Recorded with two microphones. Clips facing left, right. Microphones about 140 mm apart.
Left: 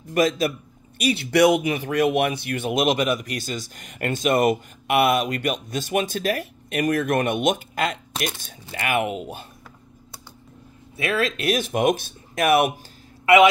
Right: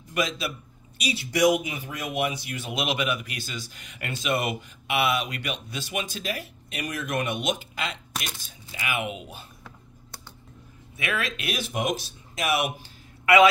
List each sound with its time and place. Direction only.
0.1 s speech: 45° left (ahead or behind)
11.0 s speech: 35° left (ahead or behind); by 12.7 s 55° left (ahead or behind)
13.2 s a man's voice: 25° left (ahead or behind)